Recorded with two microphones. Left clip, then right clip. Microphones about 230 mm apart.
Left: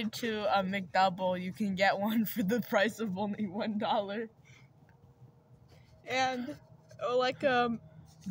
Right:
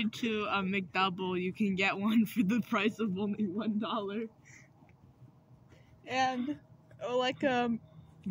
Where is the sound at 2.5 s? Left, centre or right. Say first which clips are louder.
Left 6 dB; left.